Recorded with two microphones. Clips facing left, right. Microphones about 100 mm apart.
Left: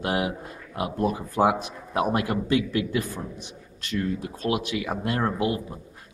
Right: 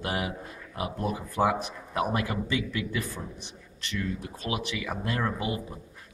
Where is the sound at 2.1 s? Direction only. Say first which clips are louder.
Left 5 dB; 55° left (ahead or behind).